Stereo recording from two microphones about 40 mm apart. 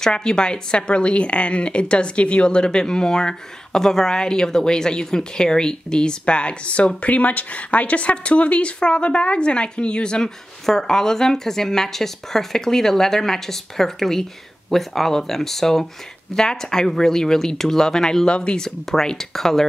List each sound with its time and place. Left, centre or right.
0.0 s speech: centre; by 8.7 s left
8.7 s speech: left
10.6 s speech: centre
18.3 s speech: left
19.0 s speech: centre